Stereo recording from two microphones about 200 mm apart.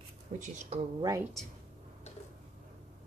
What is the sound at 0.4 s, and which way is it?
Speech, 35° right (ahead or behind).